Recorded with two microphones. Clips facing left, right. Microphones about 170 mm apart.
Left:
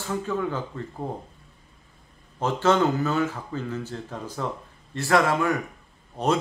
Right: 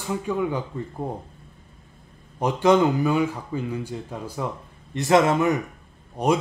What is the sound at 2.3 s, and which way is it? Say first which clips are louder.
A man's voice: right 3 dB; 15° right (ahead or behind).